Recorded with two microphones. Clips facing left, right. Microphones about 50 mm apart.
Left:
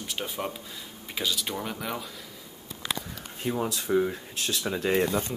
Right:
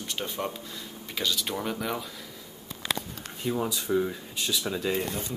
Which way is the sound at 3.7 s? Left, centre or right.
Centre.